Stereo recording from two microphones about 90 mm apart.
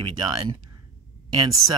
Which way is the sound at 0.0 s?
60° right (ahead or behind).